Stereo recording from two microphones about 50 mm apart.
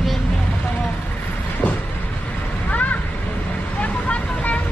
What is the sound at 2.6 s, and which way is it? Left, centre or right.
Vehicle, left.